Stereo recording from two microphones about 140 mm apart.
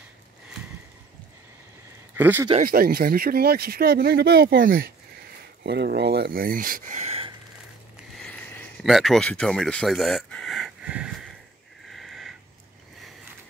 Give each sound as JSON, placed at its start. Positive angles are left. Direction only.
{"t": 2.1, "sound": "speech", "side_deg": -15}
{"t": 2.6, "sound": "speech", "side_deg": -90}
{"t": 7.0, "sound": "gasp", "side_deg": -50}
{"t": 8.1, "sound": "a sound", "side_deg": 5}
{"t": 8.8, "sound": "speech", "side_deg": 0}
{"t": 11.9, "sound": "sniff", "side_deg": 0}